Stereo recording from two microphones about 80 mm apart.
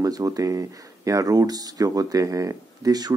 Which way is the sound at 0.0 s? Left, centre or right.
Right.